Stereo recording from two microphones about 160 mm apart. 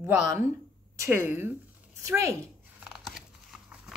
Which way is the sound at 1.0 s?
15° right (ahead or behind).